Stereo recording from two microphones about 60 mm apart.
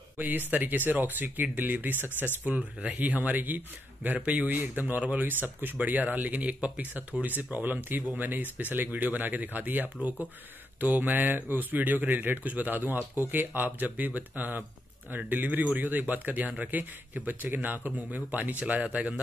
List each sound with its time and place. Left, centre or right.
0.2 s speech: right